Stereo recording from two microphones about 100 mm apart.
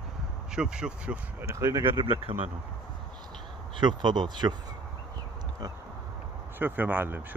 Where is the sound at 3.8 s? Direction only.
50° right (ahead or behind).